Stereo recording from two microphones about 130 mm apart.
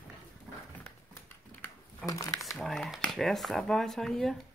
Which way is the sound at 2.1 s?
25° left (ahead or behind).